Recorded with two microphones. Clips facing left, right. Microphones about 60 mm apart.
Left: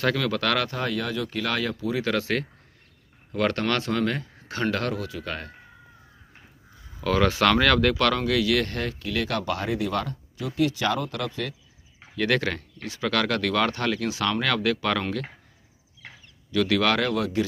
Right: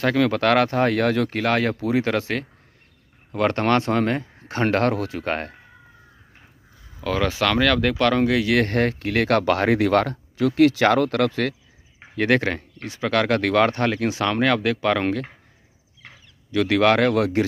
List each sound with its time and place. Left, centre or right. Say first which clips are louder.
0.0 s speech: right 5 dB; right
2.0 s speech: right 2 dB; right
7.0 s speech: left 1 dB; centre
7.8 s speech: right 2 dB; centre
8.2 s speech: right 4 dB; right
12.0 s speech: right 4 dB; right
16.5 s speech: right 5 dB; right